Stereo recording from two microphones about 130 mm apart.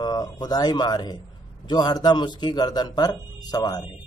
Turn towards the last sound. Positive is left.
turn(degrees=30)  # may be behind; listen again after turning